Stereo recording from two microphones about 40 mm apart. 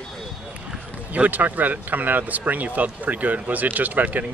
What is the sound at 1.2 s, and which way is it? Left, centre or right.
Speech, right.